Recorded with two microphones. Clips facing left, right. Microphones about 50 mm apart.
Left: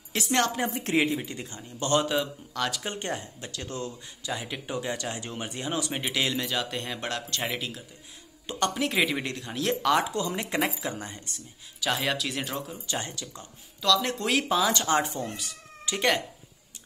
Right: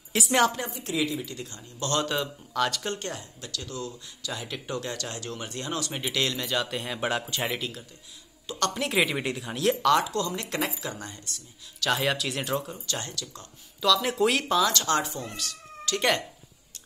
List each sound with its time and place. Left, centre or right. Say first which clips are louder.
0.1 s speech: right 3 dB; centre
0.7 s speech: left 4 dB; left
2.0 s speech: left 2 dB; centre
2.8 s speech: right 2 dB; centre
3.1 s a woman's voice: left 3 dB; left
4.3 s speech: left 1 dB; centre
7.1 s speech: right 5 dB; centre
7.4 s speech: right 1 dB; centre
10.0 s a woman's voice: even; centre
11.8 s speech: right 2 dB; centre
12.8 s a woman's voice: left 1 dB; left
13.7 s speech: right 2 dB; centre
14.7 s a woman's voice: left 1 dB; left
15.3 s cat: right 2 dB; centre